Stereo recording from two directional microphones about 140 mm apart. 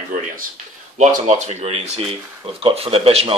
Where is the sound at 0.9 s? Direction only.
55° right (ahead or behind).